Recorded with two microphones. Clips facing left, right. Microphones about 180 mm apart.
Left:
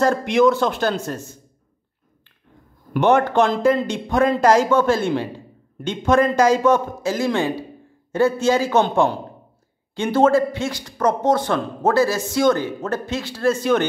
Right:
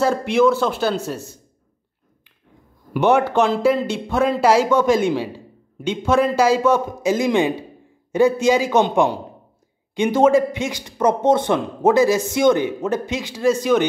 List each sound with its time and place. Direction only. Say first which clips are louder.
0.0 s speech: even; 5° right (ahead or behind)
2.9 s speech: even; 10° right (ahead or behind)